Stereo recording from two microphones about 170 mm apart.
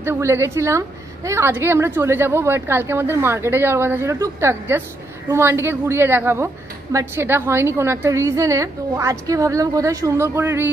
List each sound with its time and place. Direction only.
0.0 s a woman's voice: 15° right (ahead or behind)